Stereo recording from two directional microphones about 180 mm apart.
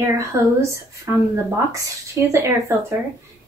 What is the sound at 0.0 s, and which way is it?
Speech, 15° right (ahead or behind).